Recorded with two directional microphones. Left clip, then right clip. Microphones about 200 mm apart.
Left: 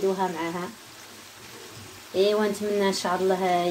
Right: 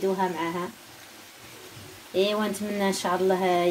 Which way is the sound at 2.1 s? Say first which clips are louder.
Left 3 dB; 10° right (ahead or behind).